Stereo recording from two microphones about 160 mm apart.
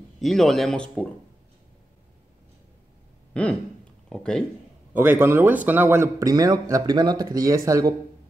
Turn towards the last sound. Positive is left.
turn(degrees=-20)  # may be behind; listen again after turning